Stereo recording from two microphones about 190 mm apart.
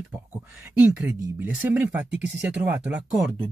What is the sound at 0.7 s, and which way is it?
Speech, 10° right (ahead or behind).